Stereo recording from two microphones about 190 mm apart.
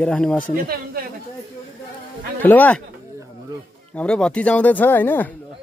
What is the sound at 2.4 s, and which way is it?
Speech, 10° left (ahead or behind).